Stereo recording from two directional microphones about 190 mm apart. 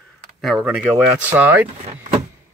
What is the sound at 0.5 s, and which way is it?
Speech, 5° right (ahead or behind).